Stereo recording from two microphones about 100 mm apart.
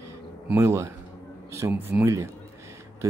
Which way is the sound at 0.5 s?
30° right (ahead or behind).